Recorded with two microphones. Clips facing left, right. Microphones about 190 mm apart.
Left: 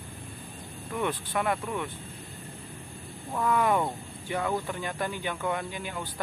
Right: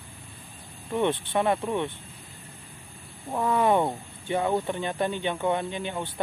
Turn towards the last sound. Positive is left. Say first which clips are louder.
# right 4 dB
turn(degrees=-25)  # may be behind; listen again after turning